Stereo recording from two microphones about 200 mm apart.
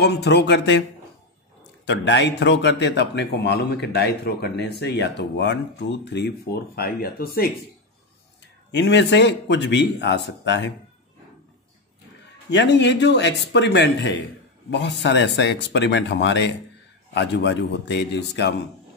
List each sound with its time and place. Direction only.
0.0 s a man's voice: 55° left (ahead or behind)
8.7 s a man's voice: 60° left (ahead or behind)
12.4 s a man's voice: 60° left (ahead or behind)